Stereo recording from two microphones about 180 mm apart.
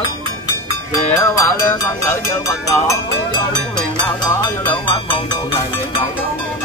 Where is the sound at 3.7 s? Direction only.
25° left (ahead or behind).